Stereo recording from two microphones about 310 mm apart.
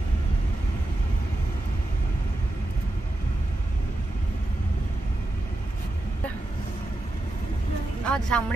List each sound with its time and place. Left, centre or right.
8.0 s a woman's voice: centre